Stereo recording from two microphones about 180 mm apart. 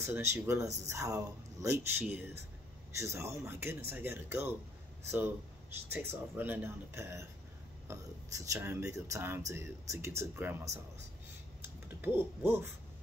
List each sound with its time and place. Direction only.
0.0 s speech: 15° right (ahead or behind)
5.9 s speech: 10° right (ahead or behind)
11.6 s typing: 10° right (ahead or behind)